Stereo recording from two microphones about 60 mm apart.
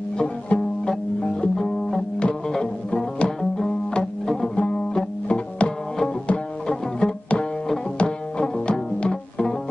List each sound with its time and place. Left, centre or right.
0.2 s music: centre